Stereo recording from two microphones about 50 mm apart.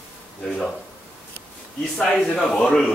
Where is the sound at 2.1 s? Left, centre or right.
Left.